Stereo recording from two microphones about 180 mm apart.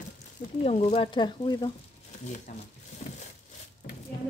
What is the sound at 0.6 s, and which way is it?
Speech, 35° left (ahead or behind).